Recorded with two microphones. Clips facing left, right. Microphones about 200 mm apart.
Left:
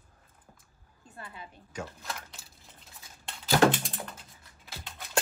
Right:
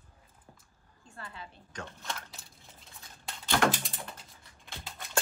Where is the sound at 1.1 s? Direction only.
20° left (ahead or behind); by 5.0 s centre (ahead or behind).